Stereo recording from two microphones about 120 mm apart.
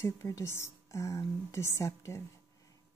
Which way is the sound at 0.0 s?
25° left (ahead or behind).